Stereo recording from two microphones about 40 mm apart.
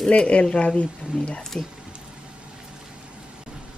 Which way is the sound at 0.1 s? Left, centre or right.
Left.